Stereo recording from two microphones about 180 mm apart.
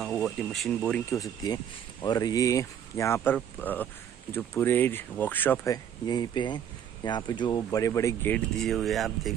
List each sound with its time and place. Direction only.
0.0 s speech: centre (ahead or behind)
1.1 s speech: 20° left (ahead or behind)
6.0 s speech: 25° left (ahead or behind); by 9.3 s centre (ahead or behind)